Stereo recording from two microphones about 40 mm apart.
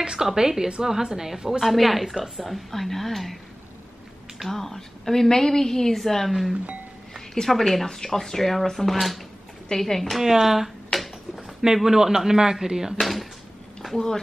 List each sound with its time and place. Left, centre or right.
0.0 s a woman's voice: centre
1.6 s a woman's voice: centre
4.5 s a woman's voice: centre
6.5 s speech: right
7.3 s a woman's voice: centre
10.2 s speech: centre
13.0 s a woman's voice: centre
13.9 s speech: centre